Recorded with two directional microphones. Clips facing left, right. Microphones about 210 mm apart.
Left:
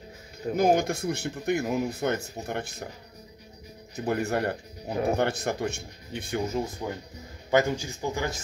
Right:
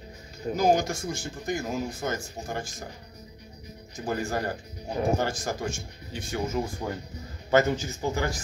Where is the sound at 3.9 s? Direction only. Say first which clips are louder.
Left 3 dB; 60° left (ahead or behind).